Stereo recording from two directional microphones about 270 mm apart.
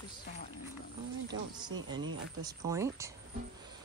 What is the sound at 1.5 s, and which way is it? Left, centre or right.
Speech, centre.